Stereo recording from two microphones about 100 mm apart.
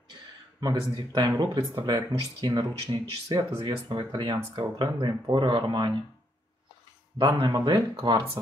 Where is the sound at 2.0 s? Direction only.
45° right (ahead or behind).